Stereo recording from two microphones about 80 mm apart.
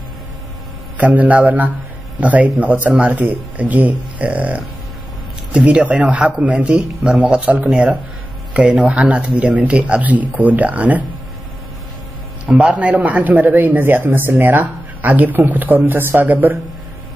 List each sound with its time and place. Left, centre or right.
0.9 s speech: centre
12.4 s speech: centre